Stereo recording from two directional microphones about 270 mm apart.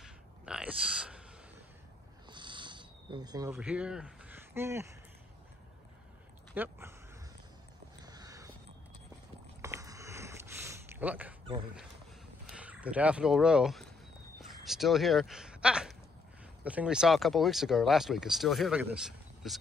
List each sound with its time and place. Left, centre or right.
0.0 s grunt: centre
2.2 s cricket: centre
3.5 s speech: centre
6.5 s speech: centre
8.0 s a sound: centre
9.6 s a sound: centre
12.4 s speech: centre